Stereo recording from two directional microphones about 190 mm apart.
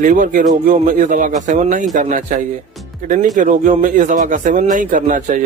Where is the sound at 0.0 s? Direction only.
45° right (ahead or behind).